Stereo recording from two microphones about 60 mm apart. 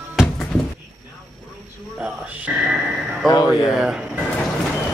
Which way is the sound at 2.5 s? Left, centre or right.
Centre.